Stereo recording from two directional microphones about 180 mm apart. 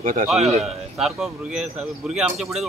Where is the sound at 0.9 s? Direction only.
Centre (ahead or behind).